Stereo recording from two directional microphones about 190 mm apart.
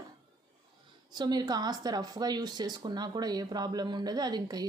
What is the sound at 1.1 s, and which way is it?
Speech, 20° right (ahead or behind).